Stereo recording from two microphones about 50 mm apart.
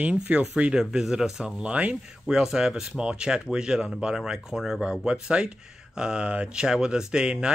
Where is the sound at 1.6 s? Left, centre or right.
Right.